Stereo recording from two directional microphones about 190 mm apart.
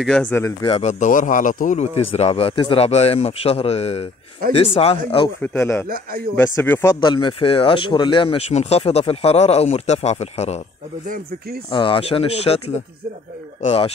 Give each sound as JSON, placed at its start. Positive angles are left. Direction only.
{"t": 0.0, "sound": "speech", "side_deg": 5}
{"t": 0.7, "sound": "speech", "side_deg": 35}
{"t": 5.4, "sound": "speech", "side_deg": 10}
{"t": 11.7, "sound": "speech", "side_deg": 25}